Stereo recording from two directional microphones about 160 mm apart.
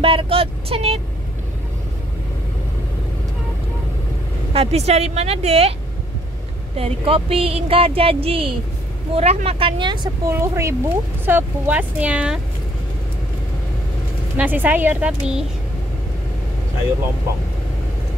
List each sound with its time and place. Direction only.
0.0 s speech: 35° right (ahead or behind)
4.6 s speech: 40° right (ahead or behind)
6.8 s speech: 35° right (ahead or behind)
10.3 s speech: 15° right (ahead or behind)
14.3 s speech: 10° right (ahead or behind)